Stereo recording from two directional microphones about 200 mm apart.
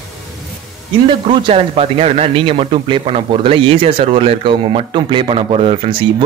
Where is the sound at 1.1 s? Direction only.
25° right (ahead or behind).